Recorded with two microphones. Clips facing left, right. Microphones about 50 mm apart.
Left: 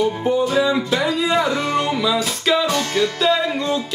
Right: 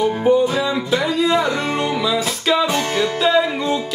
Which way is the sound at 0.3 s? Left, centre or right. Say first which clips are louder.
Right 2 dB; centre.